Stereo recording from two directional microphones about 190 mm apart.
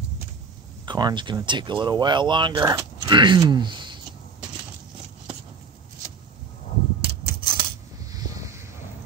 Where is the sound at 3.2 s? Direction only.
25° right (ahead or behind).